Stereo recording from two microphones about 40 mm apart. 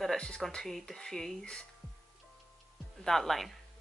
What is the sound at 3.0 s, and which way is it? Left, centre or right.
Speech, centre.